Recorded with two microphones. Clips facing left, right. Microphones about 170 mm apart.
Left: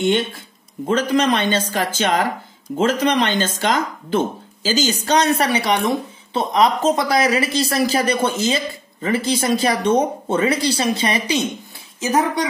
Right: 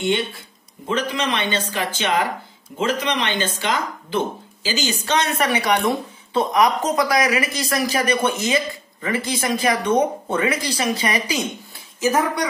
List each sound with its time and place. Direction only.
0.8 s speech: 40° left (ahead or behind); by 12.4 s 20° left (ahead or behind)